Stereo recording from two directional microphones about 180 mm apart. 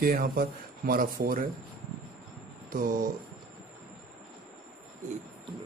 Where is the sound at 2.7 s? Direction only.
50° right (ahead or behind).